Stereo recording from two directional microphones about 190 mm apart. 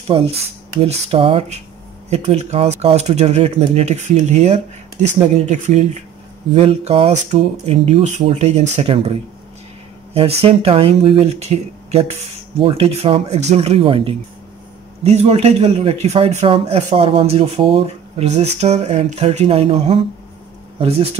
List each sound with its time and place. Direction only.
0.1 s a man's voice: 30° right (ahead or behind)
10.1 s a man's voice: 30° right (ahead or behind)